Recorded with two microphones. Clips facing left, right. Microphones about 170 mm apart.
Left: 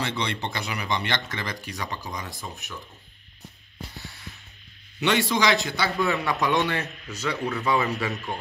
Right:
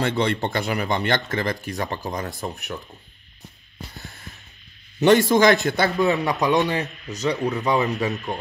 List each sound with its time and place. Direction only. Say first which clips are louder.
0.0 s speech: right 7 dB; 50° right (ahead or behind)
5.0 s speech: right 8 dB; 45° right (ahead or behind)
5.9 s a man's voice: right 4 dB; 20° right (ahead or behind)